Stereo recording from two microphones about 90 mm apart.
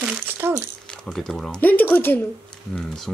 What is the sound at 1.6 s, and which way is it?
Speech, 20° left (ahead or behind).